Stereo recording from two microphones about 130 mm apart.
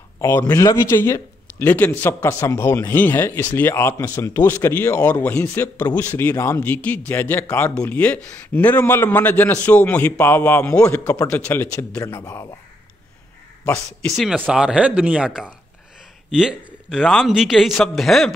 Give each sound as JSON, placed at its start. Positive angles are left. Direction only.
{"t": 0.2, "sound": "speech", "side_deg": 20}
{"t": 13.7, "sound": "a man's voice", "side_deg": 0}